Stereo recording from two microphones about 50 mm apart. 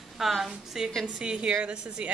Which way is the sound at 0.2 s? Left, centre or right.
Centre.